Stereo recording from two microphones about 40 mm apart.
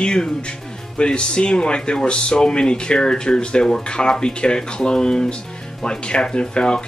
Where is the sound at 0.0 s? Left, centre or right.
Left.